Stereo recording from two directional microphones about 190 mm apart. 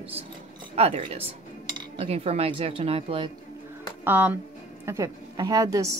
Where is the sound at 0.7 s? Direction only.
35° right (ahead or behind).